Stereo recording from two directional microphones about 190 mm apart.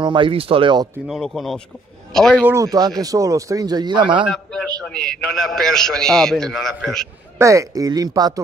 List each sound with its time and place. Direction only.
0.0 s speech: 25° right (ahead or behind)
1.0 s a man's voice: centre (ahead or behind)
2.4 s speech: 15° right (ahead or behind)
4.2 s a man's voice: centre (ahead or behind)
7.3 s speech: 15° right (ahead or behind)